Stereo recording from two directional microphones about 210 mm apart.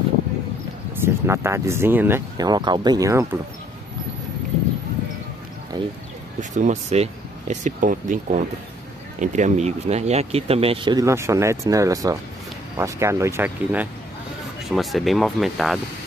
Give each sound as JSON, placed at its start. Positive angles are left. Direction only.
{"t": 1.0, "sound": "speech", "side_deg": -10}
{"t": 5.7, "sound": "speech", "side_deg": -20}
{"t": 6.5, "sound": "speech", "side_deg": -35}